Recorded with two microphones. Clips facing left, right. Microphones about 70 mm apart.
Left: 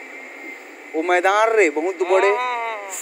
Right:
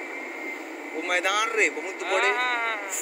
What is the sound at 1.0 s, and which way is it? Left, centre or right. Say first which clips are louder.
Speech: left 10 dB; left.